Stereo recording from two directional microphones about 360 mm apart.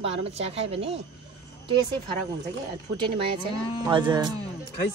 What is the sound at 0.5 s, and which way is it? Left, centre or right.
Speech, centre.